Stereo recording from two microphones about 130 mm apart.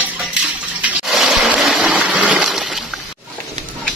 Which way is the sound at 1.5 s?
Centre (ahead or behind).